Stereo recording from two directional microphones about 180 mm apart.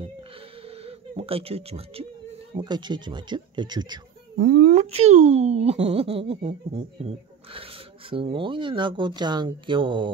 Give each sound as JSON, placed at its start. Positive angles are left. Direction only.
{"t": 0.7, "sound": "a sound", "side_deg": -30}
{"t": 2.5, "sound": "speech", "side_deg": -25}
{"t": 4.4, "sound": "speech", "side_deg": -55}
{"t": 4.7, "sound": "speech", "side_deg": -40}